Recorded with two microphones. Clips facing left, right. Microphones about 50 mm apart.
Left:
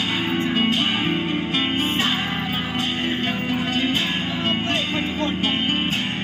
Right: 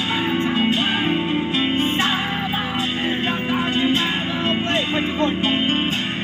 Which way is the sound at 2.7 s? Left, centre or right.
Centre.